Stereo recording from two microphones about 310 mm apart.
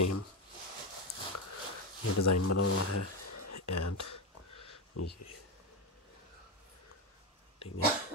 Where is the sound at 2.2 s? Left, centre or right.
Left.